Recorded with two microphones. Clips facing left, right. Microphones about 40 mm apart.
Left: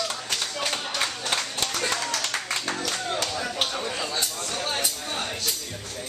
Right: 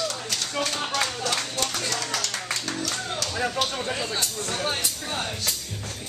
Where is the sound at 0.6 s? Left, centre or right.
Centre.